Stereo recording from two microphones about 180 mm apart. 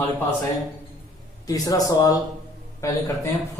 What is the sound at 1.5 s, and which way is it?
A man's voice, 20° left (ahead or behind).